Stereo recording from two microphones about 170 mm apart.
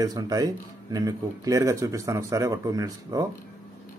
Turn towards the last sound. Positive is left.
turn(degrees=-20)  # may be behind; listen again after turning